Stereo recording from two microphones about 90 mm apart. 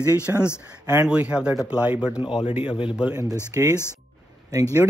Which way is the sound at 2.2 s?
65° left (ahead or behind).